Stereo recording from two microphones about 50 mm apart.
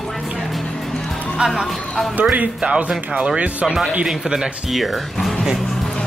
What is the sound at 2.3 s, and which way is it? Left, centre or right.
Speech, right.